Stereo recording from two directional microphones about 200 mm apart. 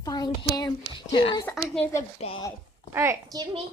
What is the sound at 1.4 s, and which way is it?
Speech, 5° left (ahead or behind).